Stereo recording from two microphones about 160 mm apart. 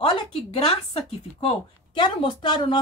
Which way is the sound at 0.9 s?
35° left (ahead or behind).